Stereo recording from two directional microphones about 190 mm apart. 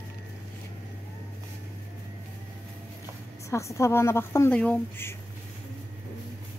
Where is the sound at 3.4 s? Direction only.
15° left (ahead or behind).